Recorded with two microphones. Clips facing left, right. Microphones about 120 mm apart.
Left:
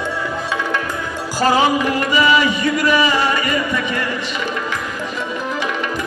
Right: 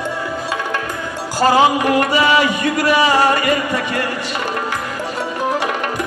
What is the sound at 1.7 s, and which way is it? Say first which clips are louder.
Music: right 2 dB; 50° right (ahead or behind).